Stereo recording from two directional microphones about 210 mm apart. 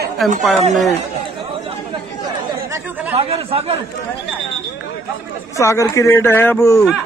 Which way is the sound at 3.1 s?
30° right (ahead or behind).